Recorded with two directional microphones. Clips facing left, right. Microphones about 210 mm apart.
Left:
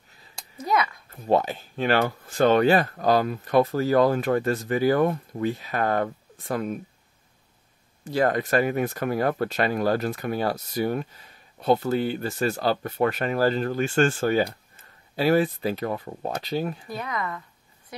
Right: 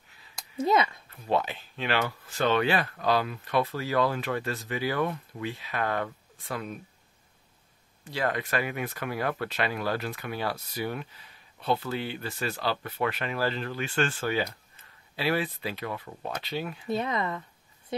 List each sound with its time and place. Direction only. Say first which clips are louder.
0.6 s speech: right 1 dB; 25° right (ahead or behind)
1.1 s speech: left 6 dB; 40° left (ahead or behind)
8.0 s speech: left 7 dB; 45° left (ahead or behind)
16.8 s speech: right 3 dB; 25° right (ahead or behind)